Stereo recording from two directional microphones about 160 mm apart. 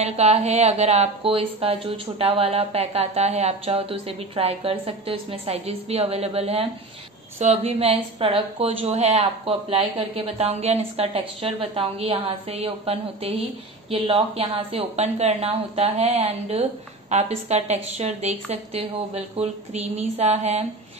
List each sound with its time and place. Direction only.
0.0 s speech: 40° right (ahead or behind)